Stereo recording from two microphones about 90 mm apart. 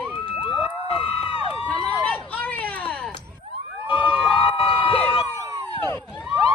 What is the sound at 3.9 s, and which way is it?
Crowd, 15° right (ahead or behind).